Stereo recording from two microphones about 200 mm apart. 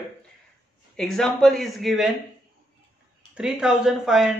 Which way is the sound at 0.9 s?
Centre (ahead or behind).